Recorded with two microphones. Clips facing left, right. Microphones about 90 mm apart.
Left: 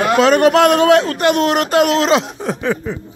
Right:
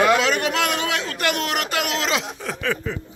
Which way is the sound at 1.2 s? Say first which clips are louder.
Left 9 dB; 35° left (ahead or behind).